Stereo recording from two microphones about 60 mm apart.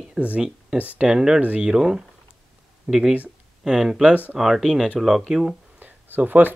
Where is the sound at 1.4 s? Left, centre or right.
Right.